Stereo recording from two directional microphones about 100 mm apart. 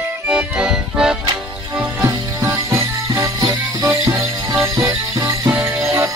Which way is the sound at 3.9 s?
30° right (ahead or behind).